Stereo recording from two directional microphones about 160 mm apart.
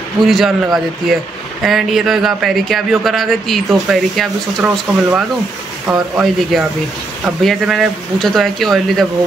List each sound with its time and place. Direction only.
0.2 s speech: centre (ahead or behind)